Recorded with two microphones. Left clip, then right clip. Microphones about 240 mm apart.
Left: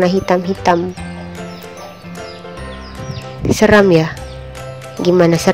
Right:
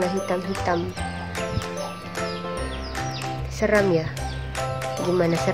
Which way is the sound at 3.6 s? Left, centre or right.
Left.